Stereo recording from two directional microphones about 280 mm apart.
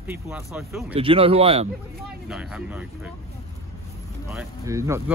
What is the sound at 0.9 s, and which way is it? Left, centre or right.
Speech, centre.